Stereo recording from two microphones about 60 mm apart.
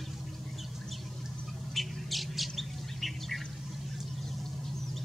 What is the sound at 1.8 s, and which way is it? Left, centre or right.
Squawk, centre.